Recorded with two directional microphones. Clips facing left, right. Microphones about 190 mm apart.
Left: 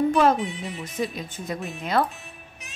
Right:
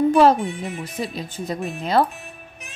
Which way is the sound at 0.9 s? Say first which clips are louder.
Right 1 dB; 30° right (ahead or behind).